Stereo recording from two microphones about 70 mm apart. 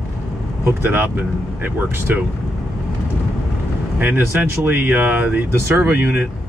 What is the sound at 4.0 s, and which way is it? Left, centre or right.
Speech, right.